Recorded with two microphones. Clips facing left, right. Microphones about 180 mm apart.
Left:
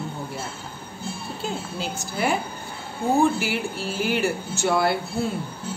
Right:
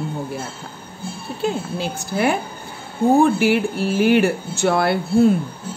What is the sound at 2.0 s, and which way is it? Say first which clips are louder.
A woman's voice: right 5 dB; 60° right (ahead or behind).